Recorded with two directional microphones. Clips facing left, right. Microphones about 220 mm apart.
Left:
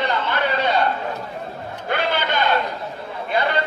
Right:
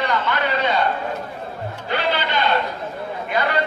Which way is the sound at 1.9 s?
50° left (ahead or behind).